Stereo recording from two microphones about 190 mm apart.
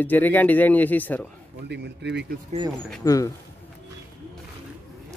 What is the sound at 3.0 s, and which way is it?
Speech, 15° left (ahead or behind).